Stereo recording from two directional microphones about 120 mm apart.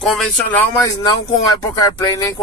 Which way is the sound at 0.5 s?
20° left (ahead or behind).